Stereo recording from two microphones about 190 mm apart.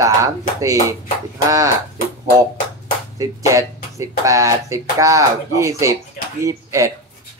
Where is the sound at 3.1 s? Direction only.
15° right (ahead or behind).